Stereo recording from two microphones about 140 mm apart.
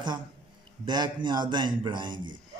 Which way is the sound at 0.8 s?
30° right (ahead or behind).